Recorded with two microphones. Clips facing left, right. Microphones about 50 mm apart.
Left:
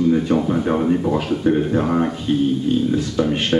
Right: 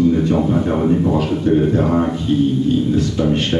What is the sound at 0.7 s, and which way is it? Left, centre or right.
Speech, centre.